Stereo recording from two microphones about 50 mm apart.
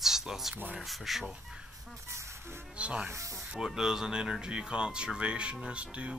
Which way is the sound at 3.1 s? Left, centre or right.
Right.